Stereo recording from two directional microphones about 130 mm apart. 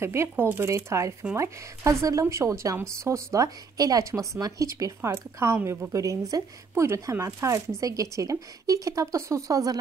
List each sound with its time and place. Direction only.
0.0 s a woman's voice: 20° right (ahead or behind)